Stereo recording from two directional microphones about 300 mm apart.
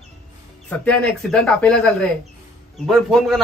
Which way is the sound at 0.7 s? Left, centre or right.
Centre.